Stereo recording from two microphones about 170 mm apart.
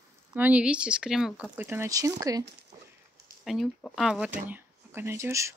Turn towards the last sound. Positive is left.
turn(degrees=-15)  # may be behind; listen again after turning